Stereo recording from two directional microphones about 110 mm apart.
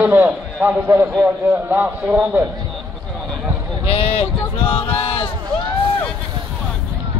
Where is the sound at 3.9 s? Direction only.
60° left (ahead or behind).